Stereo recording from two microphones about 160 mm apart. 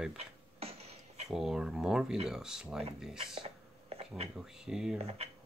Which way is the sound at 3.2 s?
35° right (ahead or behind).